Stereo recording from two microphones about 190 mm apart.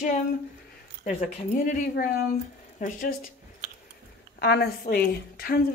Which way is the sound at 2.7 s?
45° left (ahead or behind).